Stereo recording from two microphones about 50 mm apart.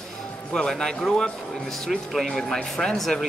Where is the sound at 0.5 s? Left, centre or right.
Centre.